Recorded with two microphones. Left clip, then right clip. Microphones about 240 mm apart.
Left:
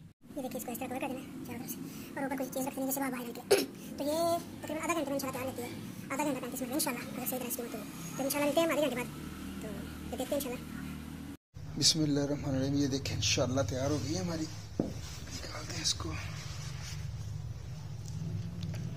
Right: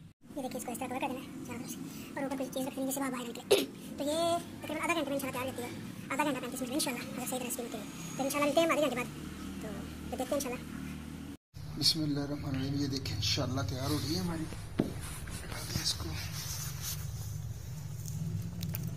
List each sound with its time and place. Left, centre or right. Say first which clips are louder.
0.4 s a woman's voice: right 1 dB; centre
10.1 s speech: right 1 dB; centre
11.8 s speech: left 2 dB; left